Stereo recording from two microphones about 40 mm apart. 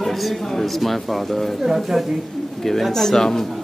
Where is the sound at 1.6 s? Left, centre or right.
Centre.